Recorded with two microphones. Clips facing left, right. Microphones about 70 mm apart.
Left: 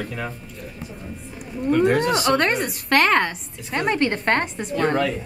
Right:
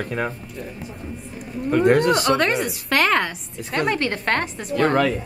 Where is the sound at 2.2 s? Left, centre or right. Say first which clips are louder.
Even; centre.